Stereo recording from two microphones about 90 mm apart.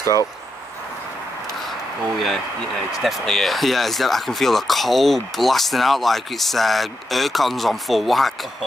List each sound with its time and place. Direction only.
0.0 s speech: 40° left (ahead or behind)
2.1 s speech: centre (ahead or behind)